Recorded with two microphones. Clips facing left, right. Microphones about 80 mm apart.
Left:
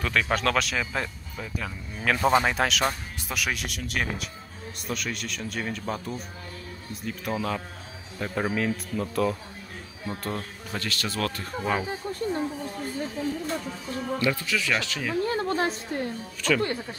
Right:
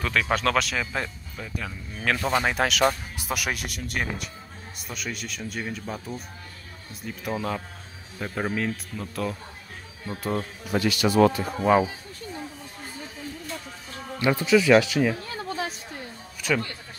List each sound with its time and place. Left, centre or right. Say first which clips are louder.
0.0 s speech: right 1 dB; centre
2.4 s speech: right 2 dB; centre
14.2 s speech: right 10 dB; right
15.2 s a sound: left 6 dB; left
16.4 s speech: left 1 dB; centre